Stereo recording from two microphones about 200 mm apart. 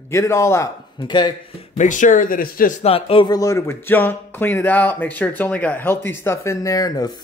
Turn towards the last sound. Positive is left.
turn(degrees=20)  # may be behind; listen again after turning